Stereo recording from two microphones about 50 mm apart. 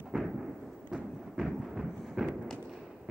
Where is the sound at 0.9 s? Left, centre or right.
Centre.